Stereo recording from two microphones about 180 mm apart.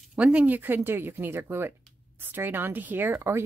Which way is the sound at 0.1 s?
5° right (ahead or behind).